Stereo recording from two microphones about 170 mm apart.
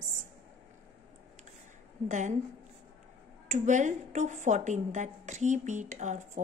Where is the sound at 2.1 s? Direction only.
45° right (ahead or behind).